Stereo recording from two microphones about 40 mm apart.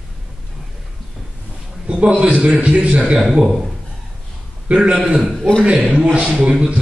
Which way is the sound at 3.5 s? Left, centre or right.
Centre.